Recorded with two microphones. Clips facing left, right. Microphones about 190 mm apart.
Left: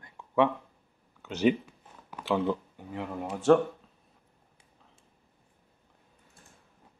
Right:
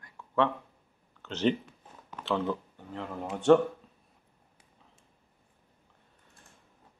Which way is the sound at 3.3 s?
5° left (ahead or behind).